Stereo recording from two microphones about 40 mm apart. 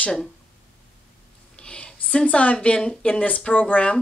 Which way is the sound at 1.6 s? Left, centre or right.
Left.